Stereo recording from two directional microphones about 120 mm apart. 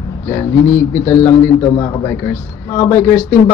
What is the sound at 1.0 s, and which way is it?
A man's voice, 25° left (ahead or behind).